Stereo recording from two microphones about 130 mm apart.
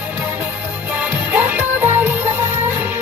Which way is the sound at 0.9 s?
15° right (ahead or behind).